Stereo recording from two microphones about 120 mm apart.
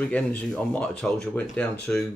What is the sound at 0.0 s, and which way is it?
Speech, 10° left (ahead or behind).